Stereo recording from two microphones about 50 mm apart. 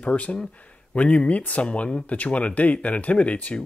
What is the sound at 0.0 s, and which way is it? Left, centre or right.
Speech, left.